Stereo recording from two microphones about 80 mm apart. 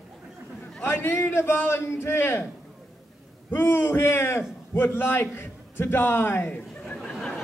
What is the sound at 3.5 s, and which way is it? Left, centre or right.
A man's voice, left.